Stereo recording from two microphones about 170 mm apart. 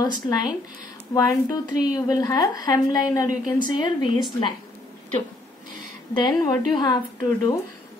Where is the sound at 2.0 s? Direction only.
20° left (ahead or behind).